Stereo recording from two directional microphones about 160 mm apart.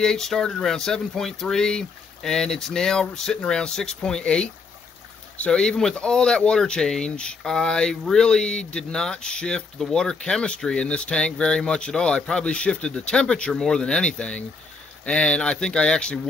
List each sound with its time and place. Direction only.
0.0 s speech: 5° left (ahead or behind)